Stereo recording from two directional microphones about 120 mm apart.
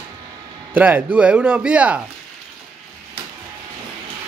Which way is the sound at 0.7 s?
10° right (ahead or behind).